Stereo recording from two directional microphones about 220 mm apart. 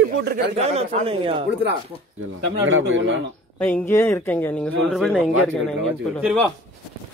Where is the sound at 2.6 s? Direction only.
60° right (ahead or behind).